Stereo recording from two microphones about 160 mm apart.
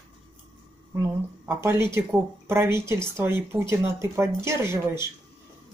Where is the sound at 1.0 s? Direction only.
15° right (ahead or behind).